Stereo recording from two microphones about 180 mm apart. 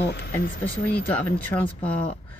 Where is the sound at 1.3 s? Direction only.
10° left (ahead or behind).